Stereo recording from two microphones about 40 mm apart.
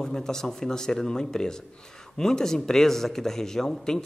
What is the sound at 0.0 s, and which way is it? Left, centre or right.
A man's voice, centre.